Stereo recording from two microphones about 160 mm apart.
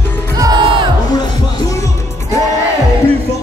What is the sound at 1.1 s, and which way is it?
Music, 20° left (ahead or behind).